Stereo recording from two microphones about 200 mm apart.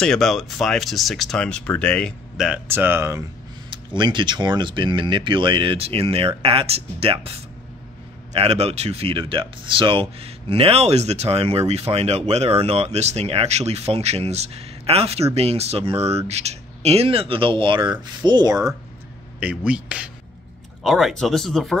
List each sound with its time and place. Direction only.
0.0 s speech: centre (ahead or behind); by 3.3 s 15° right (ahead or behind)
3.7 s speech: 25° right (ahead or behind)
19.4 s speech: 5° right (ahead or behind)